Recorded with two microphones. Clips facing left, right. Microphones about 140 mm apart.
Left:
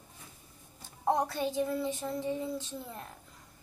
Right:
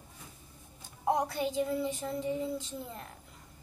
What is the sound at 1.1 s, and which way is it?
Child singing, 15° right (ahead or behind).